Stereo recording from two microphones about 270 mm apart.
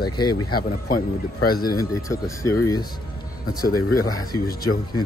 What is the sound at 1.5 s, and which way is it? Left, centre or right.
Speech, centre.